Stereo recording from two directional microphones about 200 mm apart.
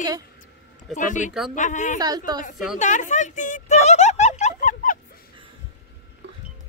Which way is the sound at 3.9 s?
35° left (ahead or behind).